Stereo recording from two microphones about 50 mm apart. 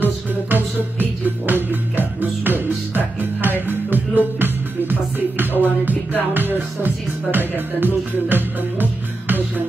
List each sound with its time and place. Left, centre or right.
0.0 s music: right